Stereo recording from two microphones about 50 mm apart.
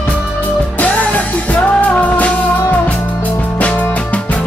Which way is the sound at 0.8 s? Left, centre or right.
Left.